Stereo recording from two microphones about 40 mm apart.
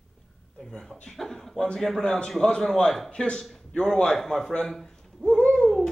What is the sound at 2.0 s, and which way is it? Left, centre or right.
A man's voice, left.